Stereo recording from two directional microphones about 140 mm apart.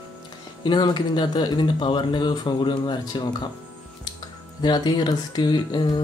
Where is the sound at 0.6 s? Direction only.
30° left (ahead or behind).